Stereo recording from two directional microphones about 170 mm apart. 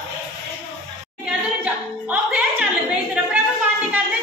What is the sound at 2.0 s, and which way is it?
Music, 5° right (ahead or behind).